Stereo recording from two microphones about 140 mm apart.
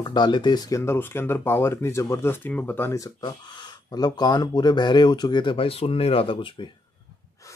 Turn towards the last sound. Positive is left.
turn(degrees=40)  # may be behind; listen again after turning